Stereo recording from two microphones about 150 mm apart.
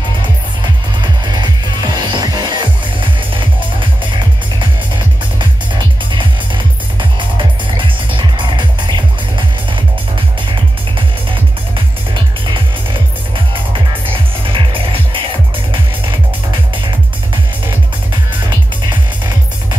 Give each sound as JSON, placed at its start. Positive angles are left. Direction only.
{"t": 1.3, "sound": "music", "side_deg": -30}
{"t": 6.1, "sound": "music", "side_deg": -35}
{"t": 14.1, "sound": "music", "side_deg": -35}